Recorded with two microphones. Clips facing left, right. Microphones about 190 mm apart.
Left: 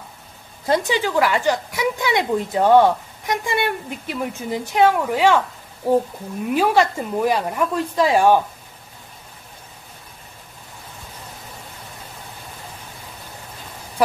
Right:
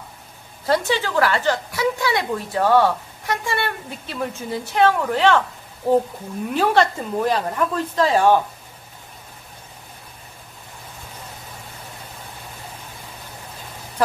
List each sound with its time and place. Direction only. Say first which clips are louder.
0.7 s a woman's voice: left 1 dB; 15° left (ahead or behind)